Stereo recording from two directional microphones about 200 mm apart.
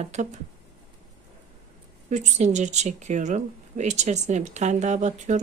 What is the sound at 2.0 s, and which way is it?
Speech, 35° right (ahead or behind).